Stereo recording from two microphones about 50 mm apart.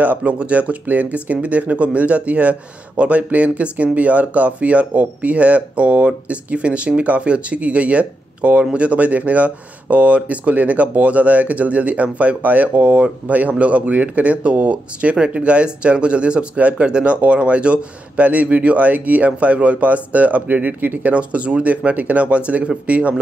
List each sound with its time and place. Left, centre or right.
0.0 s speech: right